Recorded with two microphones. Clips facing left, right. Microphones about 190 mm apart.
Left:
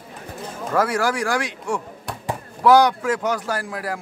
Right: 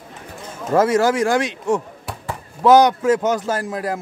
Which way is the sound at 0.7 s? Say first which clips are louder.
Right 5 dB; 25° right (ahead or behind).